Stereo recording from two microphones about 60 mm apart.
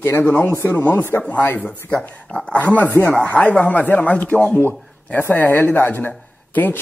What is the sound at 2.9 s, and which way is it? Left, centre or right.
Speech, left.